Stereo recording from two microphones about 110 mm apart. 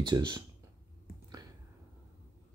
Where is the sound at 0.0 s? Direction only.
40° right (ahead or behind).